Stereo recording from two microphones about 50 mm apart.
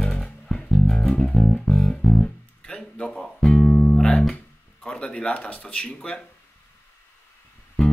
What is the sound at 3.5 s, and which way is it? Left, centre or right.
Music, centre.